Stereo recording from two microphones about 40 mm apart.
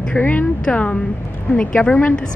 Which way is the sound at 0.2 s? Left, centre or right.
Left.